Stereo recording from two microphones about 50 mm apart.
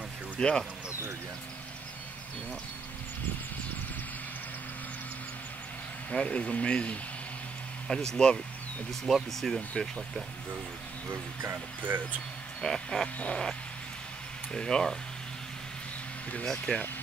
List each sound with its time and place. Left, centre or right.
0.4 s speech: left
6.0 s speech: left
7.9 s speech: centre
9.8 s speech: centre
11.8 s speech: right
12.6 s speech: centre
16.4 s speech: centre